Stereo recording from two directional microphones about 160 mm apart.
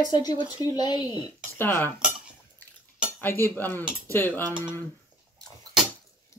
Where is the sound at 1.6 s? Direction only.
15° left (ahead or behind).